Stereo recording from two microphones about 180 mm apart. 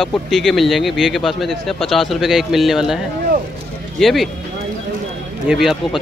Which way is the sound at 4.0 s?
Centre (ahead or behind).